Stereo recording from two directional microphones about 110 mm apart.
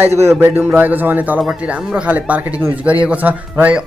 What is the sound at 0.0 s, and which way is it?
A man's voice, 25° right (ahead or behind).